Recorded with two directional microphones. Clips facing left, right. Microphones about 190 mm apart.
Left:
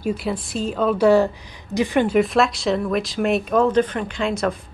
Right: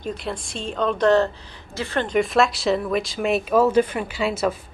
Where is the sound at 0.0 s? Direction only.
5° left (ahead or behind).